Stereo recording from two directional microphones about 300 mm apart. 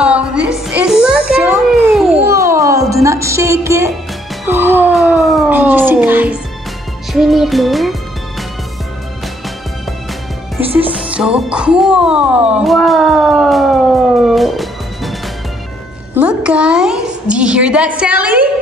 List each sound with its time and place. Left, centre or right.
0.0 s music: centre
4.5 s cat: centre
7.1 s music: centre
10.6 s music: centre
11.1 s speech: centre
16.2 s a sound: centre